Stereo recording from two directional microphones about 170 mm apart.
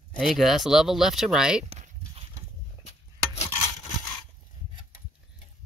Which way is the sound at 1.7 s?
35° right (ahead or behind).